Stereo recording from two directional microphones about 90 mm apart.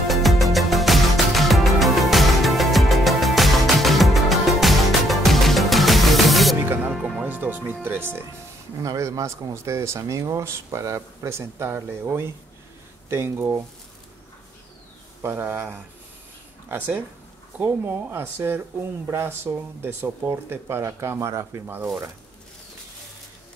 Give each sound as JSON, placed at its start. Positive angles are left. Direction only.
{"t": 0.1, "sound": "music", "side_deg": 0}
{"t": 7.2, "sound": "music", "side_deg": -20}
{"t": 8.8, "sound": "speech", "side_deg": -35}
{"t": 15.2, "sound": "speech", "side_deg": -25}